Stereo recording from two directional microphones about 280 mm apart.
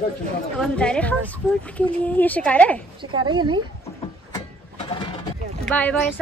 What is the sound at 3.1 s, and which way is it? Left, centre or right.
Speech, centre.